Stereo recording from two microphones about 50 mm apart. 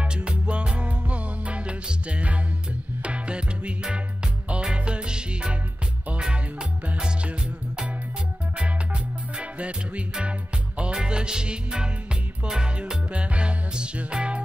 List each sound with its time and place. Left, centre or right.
0.0 s music: centre